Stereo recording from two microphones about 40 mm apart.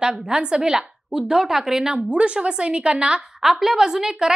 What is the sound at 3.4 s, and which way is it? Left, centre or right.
Speech, centre.